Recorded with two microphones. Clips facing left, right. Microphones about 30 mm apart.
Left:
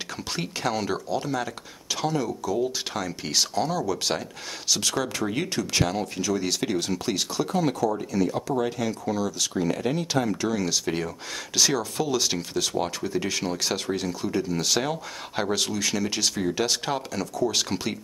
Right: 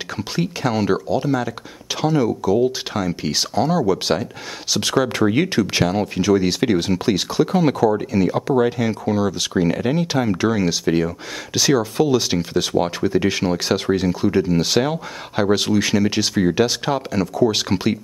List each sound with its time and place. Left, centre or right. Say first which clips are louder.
0.4 s speech: right 7 dB; centre
4.8 s speech: right 9 dB; right
10.5 s speech: right 7 dB; right